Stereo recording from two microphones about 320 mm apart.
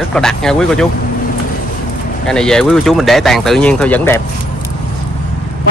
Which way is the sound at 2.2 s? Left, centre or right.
Centre.